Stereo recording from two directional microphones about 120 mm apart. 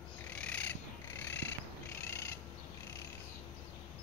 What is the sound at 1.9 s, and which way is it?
Cat, 20° left (ahead or behind).